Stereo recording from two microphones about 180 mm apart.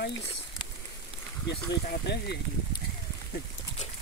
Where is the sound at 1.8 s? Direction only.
70° left (ahead or behind).